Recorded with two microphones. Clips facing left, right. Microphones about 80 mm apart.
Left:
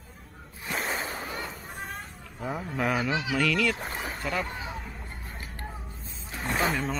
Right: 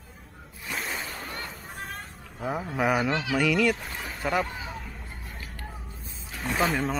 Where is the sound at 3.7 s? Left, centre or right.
Left.